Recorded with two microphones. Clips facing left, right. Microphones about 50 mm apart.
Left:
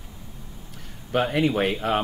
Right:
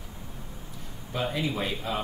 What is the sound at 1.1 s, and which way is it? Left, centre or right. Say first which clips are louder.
Speech: left 8 dB; left.